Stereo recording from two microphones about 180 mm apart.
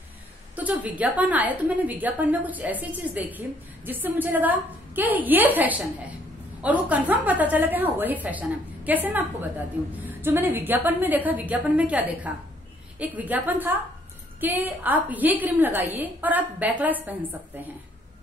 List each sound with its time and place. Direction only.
0.6 s a woman's voice: 10° right (ahead or behind)